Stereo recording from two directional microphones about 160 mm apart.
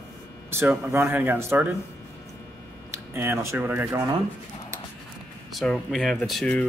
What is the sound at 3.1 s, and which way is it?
Speech, 15° right (ahead or behind).